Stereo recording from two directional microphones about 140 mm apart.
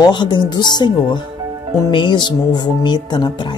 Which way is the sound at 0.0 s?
30° left (ahead or behind).